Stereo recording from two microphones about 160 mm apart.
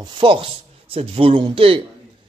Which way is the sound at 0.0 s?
30° right (ahead or behind).